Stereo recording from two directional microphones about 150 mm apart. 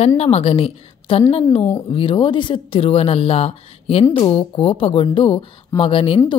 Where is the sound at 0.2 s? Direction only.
45° left (ahead or behind).